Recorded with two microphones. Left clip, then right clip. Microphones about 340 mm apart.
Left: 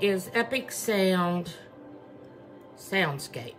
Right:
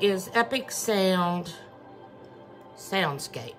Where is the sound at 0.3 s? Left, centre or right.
Centre.